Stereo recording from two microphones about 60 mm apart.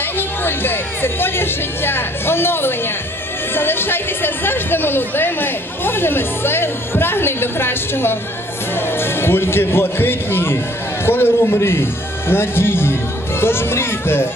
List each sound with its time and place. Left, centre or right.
0.2 s speech: left